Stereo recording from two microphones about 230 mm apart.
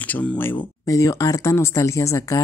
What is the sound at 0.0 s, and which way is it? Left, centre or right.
Speech, centre.